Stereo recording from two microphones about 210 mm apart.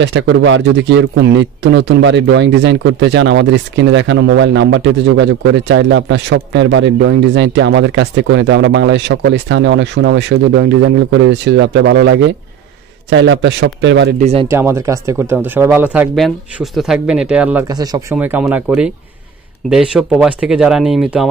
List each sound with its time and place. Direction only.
0.0 s a man's voice: 55° right (ahead or behind)
14.2 s speech: 30° right (ahead or behind)
14.5 s speech: 10° right (ahead or behind)
17.6 s speech: 20° right (ahead or behind)
18.1 s speech: 5° right (ahead or behind)